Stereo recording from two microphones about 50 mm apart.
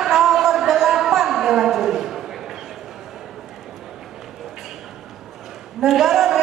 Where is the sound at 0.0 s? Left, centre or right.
Centre.